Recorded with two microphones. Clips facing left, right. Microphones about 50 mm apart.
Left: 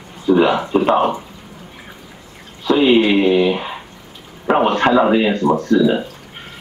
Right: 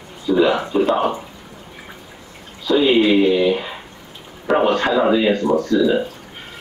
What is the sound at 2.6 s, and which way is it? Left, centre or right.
Speech, left.